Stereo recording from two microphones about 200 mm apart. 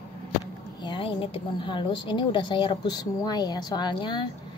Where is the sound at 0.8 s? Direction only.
25° left (ahead or behind).